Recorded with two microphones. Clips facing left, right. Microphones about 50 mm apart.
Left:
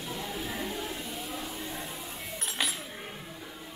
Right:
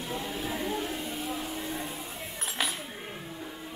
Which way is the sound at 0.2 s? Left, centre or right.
Centre.